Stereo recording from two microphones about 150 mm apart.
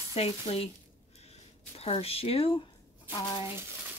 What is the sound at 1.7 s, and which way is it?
Speech, 40° left (ahead or behind).